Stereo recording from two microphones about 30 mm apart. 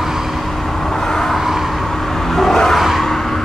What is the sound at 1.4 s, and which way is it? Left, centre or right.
Vehicle, centre.